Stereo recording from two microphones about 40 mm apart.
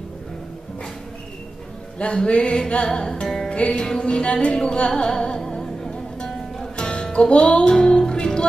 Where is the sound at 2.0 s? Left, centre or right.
Left.